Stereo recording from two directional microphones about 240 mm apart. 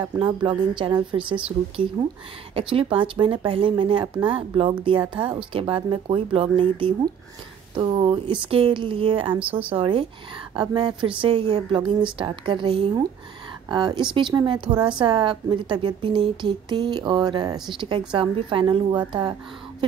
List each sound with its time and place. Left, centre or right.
0.0 s a woman's voice: centre